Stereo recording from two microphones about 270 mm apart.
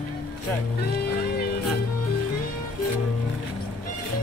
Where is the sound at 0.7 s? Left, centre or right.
Left.